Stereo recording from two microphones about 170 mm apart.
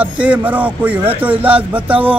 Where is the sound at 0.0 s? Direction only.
10° right (ahead or behind).